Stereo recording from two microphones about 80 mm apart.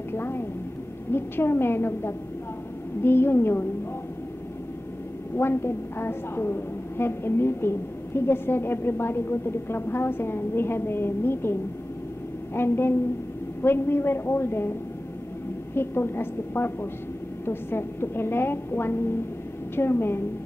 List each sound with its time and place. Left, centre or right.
0.1 s a woman's voice: left
5.4 s a woman's voice: left
12.5 s a woman's voice: left
15.7 s a woman's voice: left